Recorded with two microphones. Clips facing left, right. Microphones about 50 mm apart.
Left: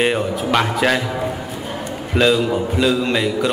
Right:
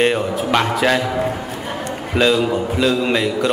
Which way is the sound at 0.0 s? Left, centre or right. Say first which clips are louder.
Right 1 dB; centre.